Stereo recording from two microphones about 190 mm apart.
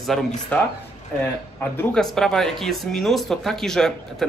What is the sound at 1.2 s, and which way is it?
Speech, 10° left (ahead or behind).